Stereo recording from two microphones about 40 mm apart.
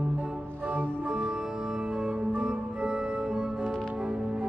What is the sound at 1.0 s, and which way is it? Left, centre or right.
Music, centre.